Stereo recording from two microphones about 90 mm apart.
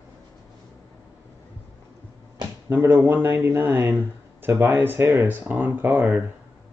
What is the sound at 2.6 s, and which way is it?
Speech, 20° right (ahead or behind).